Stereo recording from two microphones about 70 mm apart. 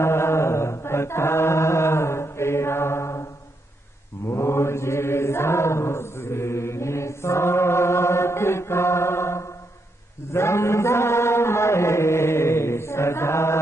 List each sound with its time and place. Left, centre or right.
0.0 s chant: left
4.3 s mantra: left
10.3 s chant: left